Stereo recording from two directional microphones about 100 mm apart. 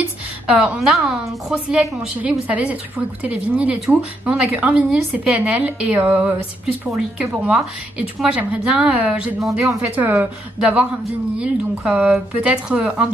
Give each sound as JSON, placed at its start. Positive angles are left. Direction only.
{"t": 0.0, "sound": "a sound", "side_deg": -15}
{"t": 0.7, "sound": "a woman's voice", "side_deg": 0}
{"t": 7.2, "sound": "a woman's voice", "side_deg": -10}